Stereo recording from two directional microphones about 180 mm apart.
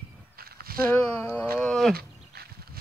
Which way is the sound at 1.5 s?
5° left (ahead or behind).